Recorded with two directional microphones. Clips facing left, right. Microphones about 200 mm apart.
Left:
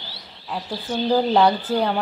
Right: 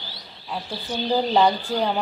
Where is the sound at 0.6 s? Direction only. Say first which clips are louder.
Left 5 dB; 45° left (ahead or behind).